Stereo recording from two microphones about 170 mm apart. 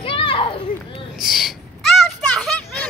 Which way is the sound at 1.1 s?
Centre (ahead or behind).